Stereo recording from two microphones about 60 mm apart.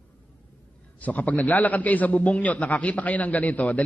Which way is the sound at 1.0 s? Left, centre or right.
Left.